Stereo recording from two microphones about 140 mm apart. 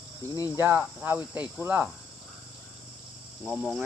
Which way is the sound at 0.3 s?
25° left (ahead or behind).